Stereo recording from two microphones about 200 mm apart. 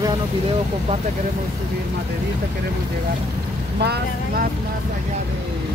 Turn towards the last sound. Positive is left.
turn(degrees=-55)  # may be behind; listen again after turning